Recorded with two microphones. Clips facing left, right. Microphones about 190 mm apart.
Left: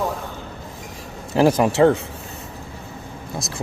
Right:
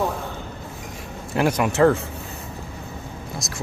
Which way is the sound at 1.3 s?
30° left (ahead or behind).